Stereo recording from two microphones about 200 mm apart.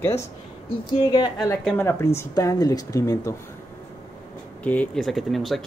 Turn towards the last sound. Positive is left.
turn(degrees=0)  # may be behind; listen again after turning